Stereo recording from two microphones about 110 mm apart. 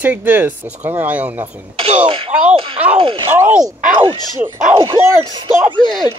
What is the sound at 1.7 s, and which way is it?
Speech, 55° right (ahead or behind).